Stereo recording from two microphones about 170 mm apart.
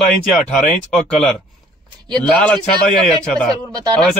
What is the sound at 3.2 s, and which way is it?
Speech, 5° left (ahead or behind).